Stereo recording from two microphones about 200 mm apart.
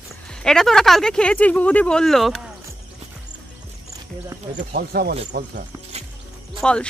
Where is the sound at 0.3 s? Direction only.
5° left (ahead or behind).